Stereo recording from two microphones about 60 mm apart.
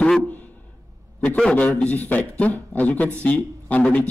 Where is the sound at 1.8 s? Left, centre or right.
Left.